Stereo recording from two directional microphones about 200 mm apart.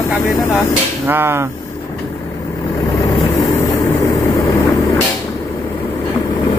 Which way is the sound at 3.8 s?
20° left (ahead or behind).